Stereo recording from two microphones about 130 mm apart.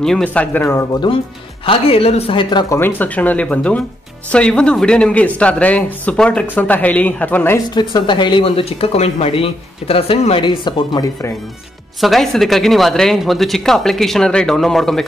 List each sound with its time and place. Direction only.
0.0 s speech: 5° left (ahead or behind)
1.7 s speech: 45° left (ahead or behind)
2.7 s speech: 15° left (ahead or behind)
7.7 s speech: 40° left (ahead or behind)
12.0 s speech: centre (ahead or behind)